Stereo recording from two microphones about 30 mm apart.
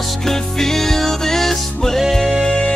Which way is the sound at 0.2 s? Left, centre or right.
Centre.